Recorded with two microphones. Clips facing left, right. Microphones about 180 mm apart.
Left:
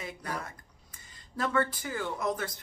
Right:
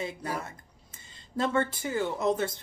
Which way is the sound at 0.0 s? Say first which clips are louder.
Right 4 dB; 25° right (ahead or behind).